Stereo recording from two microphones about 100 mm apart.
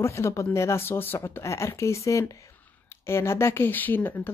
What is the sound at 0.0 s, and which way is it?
Speech, 30° left (ahead or behind).